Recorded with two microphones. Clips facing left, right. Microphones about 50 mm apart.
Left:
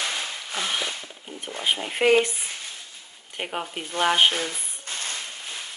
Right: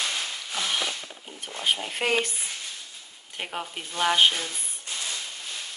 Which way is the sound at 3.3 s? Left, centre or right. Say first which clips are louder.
Left 3 dB; centre.